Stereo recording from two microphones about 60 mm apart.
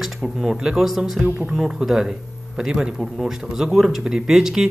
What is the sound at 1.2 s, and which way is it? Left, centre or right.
Speech, right.